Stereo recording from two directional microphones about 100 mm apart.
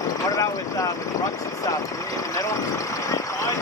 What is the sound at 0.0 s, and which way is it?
Vehicle, 35° left (ahead or behind).